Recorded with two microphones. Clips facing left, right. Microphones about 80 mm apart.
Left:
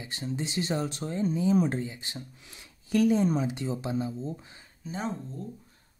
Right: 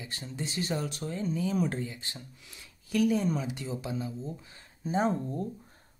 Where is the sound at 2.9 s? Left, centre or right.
Left.